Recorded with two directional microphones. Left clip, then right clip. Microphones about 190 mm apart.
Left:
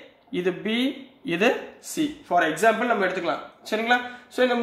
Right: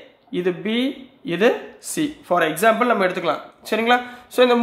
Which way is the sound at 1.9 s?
40° right (ahead or behind).